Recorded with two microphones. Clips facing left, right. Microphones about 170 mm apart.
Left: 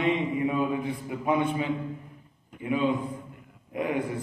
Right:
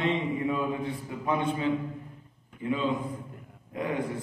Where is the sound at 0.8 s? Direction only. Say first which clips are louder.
Left 3 dB; 25° left (ahead or behind).